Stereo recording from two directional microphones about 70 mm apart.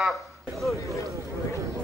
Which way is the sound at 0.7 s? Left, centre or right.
Left.